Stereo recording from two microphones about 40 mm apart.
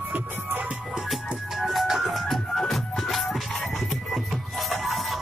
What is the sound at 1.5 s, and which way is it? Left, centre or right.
Music, centre.